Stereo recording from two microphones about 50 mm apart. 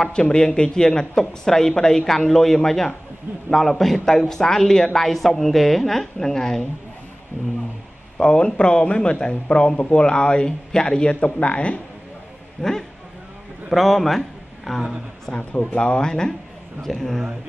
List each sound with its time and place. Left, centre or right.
0.1 s speech: centre
8.2 s speech: centre
13.7 s a man's voice: centre
15.2 s speech: centre